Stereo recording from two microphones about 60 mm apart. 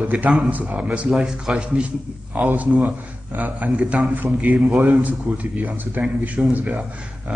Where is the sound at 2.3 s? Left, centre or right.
Right.